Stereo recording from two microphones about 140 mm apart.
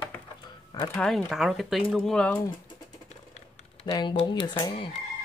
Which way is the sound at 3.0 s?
50° left (ahead or behind).